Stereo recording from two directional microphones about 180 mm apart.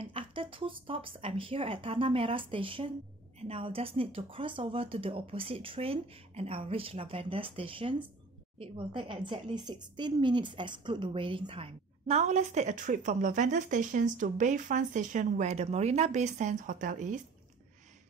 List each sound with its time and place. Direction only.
0.0 s a woman's voice: 30° right (ahead or behind)